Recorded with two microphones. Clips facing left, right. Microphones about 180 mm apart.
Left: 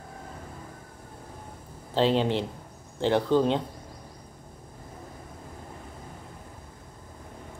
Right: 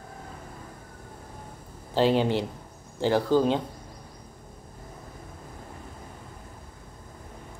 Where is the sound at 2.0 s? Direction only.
5° right (ahead or behind).